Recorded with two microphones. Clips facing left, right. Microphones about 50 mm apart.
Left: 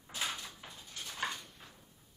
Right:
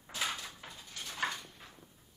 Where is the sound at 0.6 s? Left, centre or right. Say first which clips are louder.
Right 1 dB; centre.